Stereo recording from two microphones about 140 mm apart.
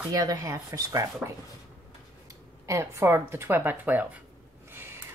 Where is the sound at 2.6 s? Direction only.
20° right (ahead or behind).